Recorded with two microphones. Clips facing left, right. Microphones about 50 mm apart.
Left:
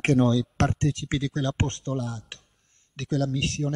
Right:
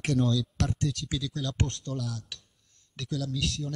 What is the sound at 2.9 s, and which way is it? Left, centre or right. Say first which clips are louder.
Speech: left 7 dB; left.